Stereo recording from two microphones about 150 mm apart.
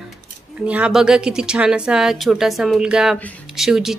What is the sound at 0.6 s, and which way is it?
A woman's voice, 10° right (ahead or behind).